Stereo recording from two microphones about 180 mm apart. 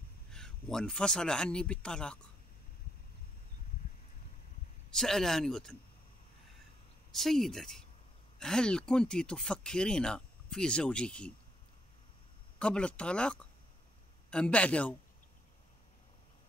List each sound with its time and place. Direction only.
0.3 s speech: 5° left (ahead or behind)
4.9 s speech: centre (ahead or behind)
7.1 s speech: centre (ahead or behind)
12.5 s a man's voice: 5° left (ahead or behind)